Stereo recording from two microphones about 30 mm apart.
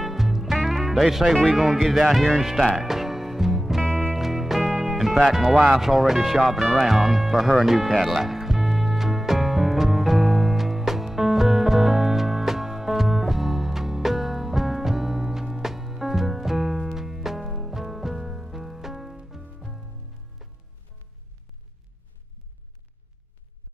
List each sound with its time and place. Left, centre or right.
0.0 s music: centre
1.5 s speech: centre
4.1 s music: centre
6.8 s speech: centre
7.6 s music: centre